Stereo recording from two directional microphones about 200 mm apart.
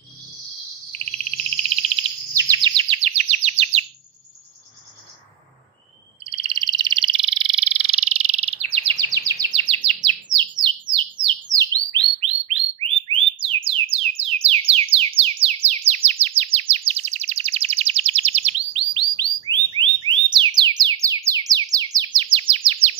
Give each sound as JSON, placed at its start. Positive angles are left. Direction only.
{"t": 0.9, "sound": "bird", "side_deg": -30}
{"t": 6.2, "sound": "frog", "side_deg": -25}
{"t": 11.5, "sound": "bird", "side_deg": -20}
{"t": 19.4, "sound": "a sound", "side_deg": -25}
{"t": 20.3, "sound": "music", "side_deg": -20}
{"t": 21.0, "sound": "bird", "side_deg": -15}